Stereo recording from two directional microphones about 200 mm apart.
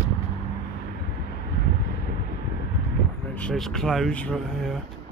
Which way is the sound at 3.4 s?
Centre (ahead or behind).